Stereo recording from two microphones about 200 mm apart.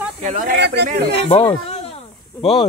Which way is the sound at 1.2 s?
25° left (ahead or behind).